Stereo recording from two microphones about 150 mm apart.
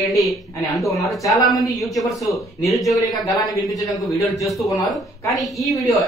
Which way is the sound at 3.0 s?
25° left (ahead or behind).